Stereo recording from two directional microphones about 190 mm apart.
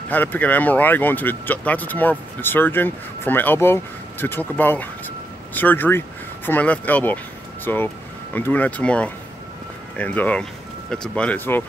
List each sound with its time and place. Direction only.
0.1 s speech: 10° left (ahead or behind)